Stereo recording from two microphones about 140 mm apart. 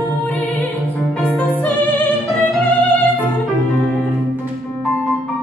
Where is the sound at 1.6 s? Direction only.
10° left (ahead or behind).